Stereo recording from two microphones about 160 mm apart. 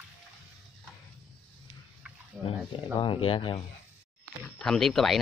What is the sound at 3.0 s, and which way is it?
Speech, 35° left (ahead or behind).